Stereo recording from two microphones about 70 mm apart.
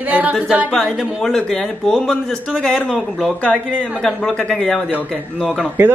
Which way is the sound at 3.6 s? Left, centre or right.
Centre.